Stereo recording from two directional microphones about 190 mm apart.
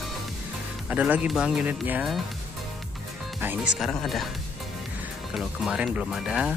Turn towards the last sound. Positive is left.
turn(degrees=-5)  # may be behind; listen again after turning